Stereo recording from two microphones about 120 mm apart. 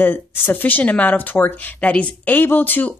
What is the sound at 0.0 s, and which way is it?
Speech, 15° left (ahead or behind).